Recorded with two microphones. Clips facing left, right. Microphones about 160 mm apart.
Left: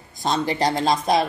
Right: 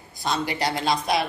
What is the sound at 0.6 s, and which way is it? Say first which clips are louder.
Speech: left 4 dB; 40° left (ahead or behind).